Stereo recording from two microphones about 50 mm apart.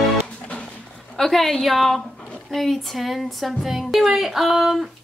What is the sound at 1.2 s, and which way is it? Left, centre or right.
A woman's voice, centre.